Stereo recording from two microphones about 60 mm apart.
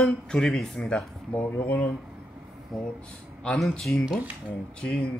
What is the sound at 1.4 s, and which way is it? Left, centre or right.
Speech, left.